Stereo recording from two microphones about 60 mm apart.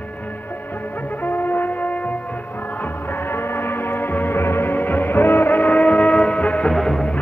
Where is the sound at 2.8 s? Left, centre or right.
Left.